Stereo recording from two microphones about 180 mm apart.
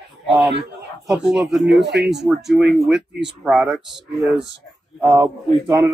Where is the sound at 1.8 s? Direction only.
70° right (ahead or behind).